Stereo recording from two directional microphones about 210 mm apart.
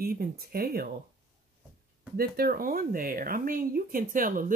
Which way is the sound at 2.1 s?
45° right (ahead or behind).